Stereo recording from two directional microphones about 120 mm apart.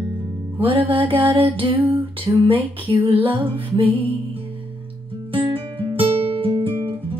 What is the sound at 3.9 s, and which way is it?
Music, 15° right (ahead or behind).